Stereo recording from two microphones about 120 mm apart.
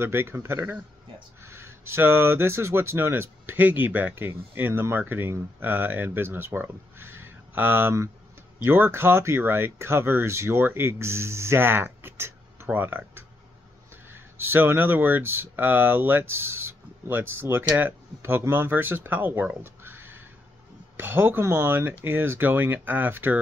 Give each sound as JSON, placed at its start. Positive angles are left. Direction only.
{"t": 0.0, "sound": "speech", "side_deg": -20}